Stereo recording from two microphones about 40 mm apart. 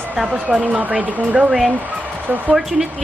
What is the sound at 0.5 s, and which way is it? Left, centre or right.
Speech, centre.